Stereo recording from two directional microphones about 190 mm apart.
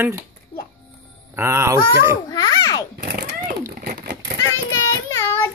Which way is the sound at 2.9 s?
55° right (ahead or behind).